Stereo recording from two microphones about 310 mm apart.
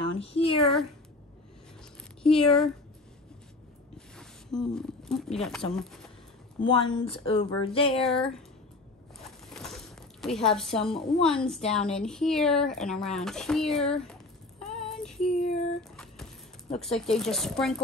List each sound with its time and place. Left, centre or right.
0.0 s a sound: centre
2.2 s speech: centre
4.2 s speech: centre
6.6 s speech: centre
9.5 s a woman's voice: centre
14.6 s child singing: centre
17.1 s speech: centre